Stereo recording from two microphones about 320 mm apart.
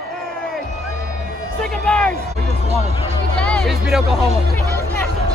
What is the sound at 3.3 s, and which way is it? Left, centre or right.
Speech, centre.